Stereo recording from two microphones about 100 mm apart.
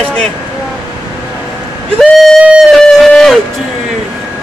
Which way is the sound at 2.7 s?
5° left (ahead or behind).